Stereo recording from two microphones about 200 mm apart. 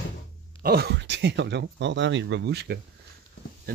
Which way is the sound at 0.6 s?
50° right (ahead or behind).